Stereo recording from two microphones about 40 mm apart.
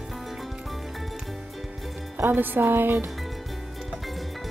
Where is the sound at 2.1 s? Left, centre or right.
Right.